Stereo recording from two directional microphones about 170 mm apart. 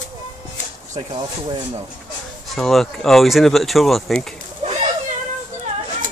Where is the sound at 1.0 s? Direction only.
30° right (ahead or behind).